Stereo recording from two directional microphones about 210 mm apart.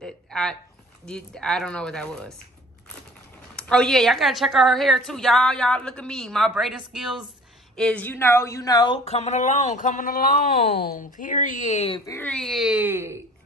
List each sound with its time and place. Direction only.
0.0 s a sound: 5° left (ahead or behind)
1.0 s a woman's voice: 5° left (ahead or behind)
3.5 s a woman's voice: 5° left (ahead or behind); by 12.0 s 30° left (ahead or behind)
12.1 s a woman's voice: 5° left (ahead or behind); by 13.2 s 10° right (ahead or behind)